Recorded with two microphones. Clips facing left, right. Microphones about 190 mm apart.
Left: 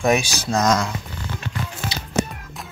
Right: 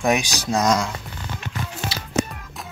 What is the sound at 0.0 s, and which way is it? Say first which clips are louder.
Speech: left 2 dB; 15° right (ahead or behind).